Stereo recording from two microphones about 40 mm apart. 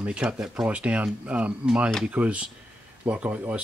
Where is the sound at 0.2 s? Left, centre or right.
Centre.